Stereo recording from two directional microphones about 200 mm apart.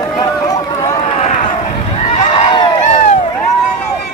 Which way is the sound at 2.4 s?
35° left (ahead or behind).